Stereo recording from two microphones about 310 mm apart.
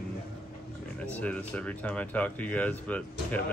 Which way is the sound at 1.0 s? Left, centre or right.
Centre.